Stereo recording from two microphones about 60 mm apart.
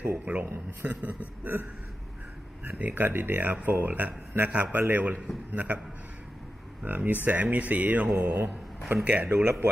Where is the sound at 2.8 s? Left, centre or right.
Right.